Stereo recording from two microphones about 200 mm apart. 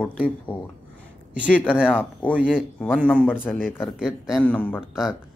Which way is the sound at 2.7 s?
5° left (ahead or behind).